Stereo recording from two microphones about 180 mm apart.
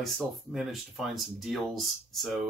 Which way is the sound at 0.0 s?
Centre (ahead or behind).